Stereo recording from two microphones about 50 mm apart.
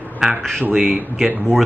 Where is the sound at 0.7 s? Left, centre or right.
Right.